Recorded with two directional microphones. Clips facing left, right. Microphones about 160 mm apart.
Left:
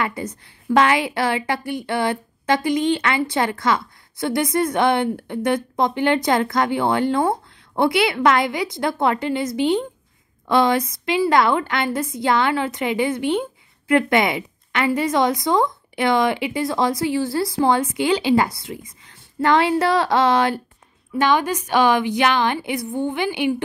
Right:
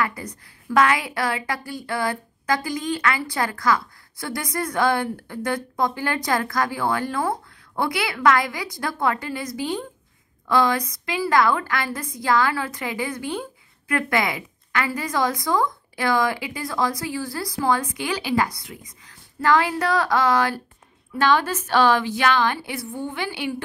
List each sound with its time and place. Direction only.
0.0 s a woman's voice: 25° left (ahead or behind)